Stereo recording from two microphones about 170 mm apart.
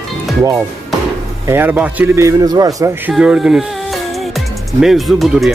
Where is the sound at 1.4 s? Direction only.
15° right (ahead or behind).